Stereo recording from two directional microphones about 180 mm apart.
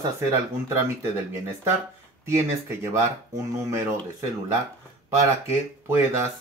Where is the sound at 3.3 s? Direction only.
15° right (ahead or behind).